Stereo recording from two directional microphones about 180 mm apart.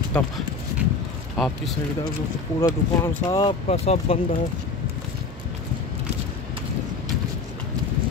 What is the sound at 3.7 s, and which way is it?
Speech, 35° left (ahead or behind).